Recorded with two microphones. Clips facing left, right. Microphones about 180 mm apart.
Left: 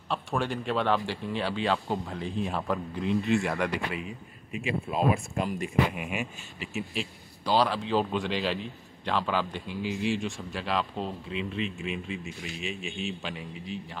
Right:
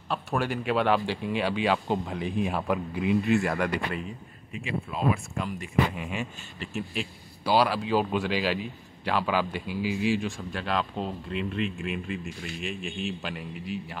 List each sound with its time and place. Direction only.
0.1 s speech: 5° right (ahead or behind)
4.9 s speech: 20° left (ahead or behind)
6.6 s a man's voice: centre (ahead or behind)